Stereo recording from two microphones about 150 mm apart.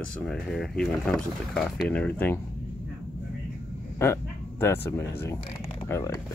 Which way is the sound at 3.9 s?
15° left (ahead or behind).